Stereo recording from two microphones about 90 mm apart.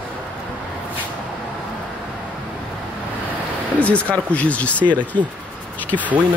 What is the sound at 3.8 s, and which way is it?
A man's voice, 15° left (ahead or behind).